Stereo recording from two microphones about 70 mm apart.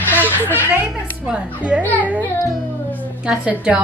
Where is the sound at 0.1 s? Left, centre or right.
Left.